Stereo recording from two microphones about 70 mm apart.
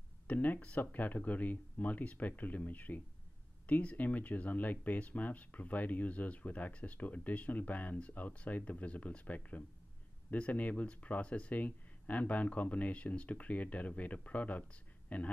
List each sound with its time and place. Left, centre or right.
0.3 s speech: left